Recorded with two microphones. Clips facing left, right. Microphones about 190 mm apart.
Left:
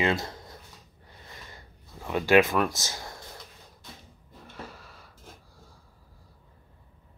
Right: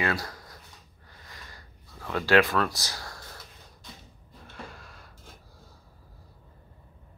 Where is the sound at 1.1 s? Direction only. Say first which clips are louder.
Left 2 dB; 25° left (ahead or behind).